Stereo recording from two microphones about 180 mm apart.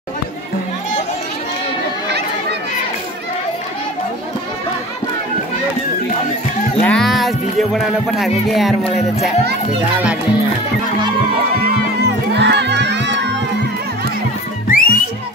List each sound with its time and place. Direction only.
6.8 s music: 5° left (ahead or behind)
12.0 s music: 70° right (ahead or behind)
14.7 s music: 50° left (ahead or behind)